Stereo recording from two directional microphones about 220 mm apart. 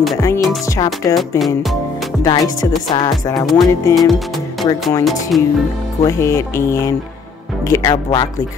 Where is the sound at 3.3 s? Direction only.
Centre (ahead or behind).